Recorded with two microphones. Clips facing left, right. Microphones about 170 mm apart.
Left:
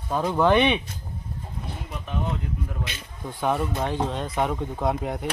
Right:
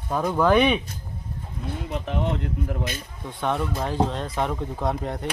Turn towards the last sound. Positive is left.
turn(degrees=5)  # may be behind; listen again after turning